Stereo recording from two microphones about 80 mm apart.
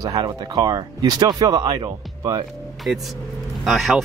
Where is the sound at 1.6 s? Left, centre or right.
Right.